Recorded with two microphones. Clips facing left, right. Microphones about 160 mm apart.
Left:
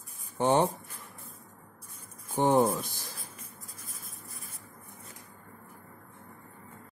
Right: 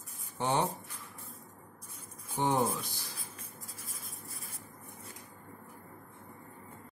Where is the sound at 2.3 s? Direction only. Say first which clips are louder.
Left 6 dB; 50° left (ahead or behind).